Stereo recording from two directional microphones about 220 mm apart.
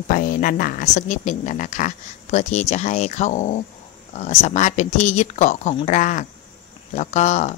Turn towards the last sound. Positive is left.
turn(degrees=35)  # may be behind; listen again after turning